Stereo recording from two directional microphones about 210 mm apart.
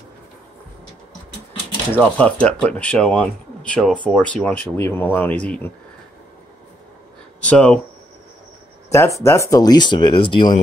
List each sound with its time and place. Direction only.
1.9 s speech: 5° left (ahead or behind)
7.4 s speech: 5° left (ahead or behind)
9.2 s speech: 15° left (ahead or behind)